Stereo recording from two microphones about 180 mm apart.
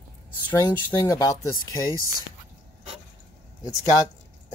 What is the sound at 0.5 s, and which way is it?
Speech, 25° left (ahead or behind).